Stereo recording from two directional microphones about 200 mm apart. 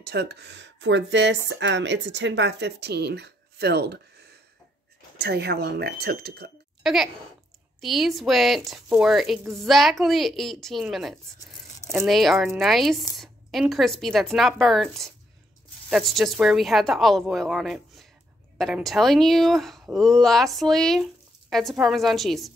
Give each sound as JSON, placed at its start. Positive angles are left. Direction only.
{"t": 0.0, "sound": "speech", "side_deg": -55}
{"t": 5.2, "sound": "speech", "side_deg": -55}
{"t": 6.8, "sound": "speech", "side_deg": 0}